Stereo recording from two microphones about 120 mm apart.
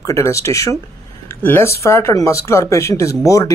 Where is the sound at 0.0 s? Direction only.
25° left (ahead or behind).